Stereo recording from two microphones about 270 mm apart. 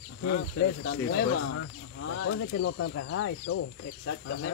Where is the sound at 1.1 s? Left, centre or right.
Left.